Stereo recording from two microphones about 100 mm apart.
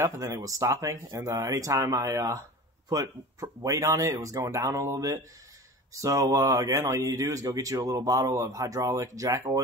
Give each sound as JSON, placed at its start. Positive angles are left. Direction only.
{"t": 0.0, "sound": "speech", "side_deg": -35}